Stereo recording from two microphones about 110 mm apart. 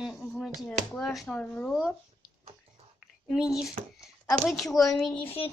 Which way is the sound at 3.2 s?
5° right (ahead or behind).